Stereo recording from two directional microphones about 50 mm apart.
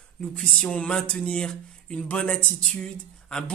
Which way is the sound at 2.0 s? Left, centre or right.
Left.